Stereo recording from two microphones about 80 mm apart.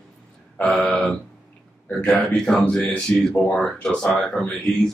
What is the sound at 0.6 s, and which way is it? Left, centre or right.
Speech, centre.